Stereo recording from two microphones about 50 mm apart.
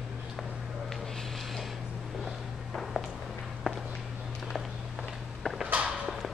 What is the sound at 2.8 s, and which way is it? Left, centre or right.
Walk, centre.